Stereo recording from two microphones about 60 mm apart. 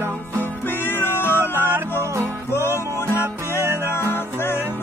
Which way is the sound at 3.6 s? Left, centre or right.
Right.